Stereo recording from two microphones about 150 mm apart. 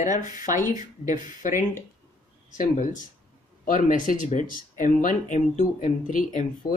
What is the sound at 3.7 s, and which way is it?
Speech, 60° left (ahead or behind).